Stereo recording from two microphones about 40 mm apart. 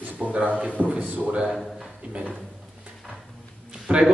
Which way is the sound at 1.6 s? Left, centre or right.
Centre.